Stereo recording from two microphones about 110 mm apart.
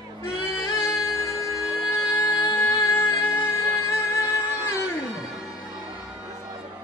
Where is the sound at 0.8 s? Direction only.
5° right (ahead or behind).